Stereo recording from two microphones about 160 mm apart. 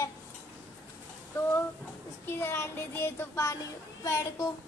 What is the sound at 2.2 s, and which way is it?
Child singing, 15° left (ahead or behind).